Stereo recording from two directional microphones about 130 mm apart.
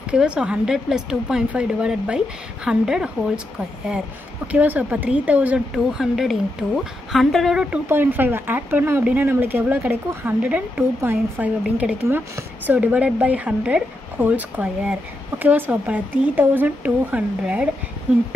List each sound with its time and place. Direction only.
0.1 s a woman's voice: 5° right (ahead or behind)
7.7 s a woman's voice: 15° right (ahead or behind)